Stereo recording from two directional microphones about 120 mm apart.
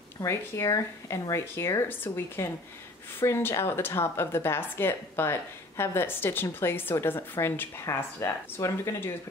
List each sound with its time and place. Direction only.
0.2 s speech: 25° left (ahead or behind)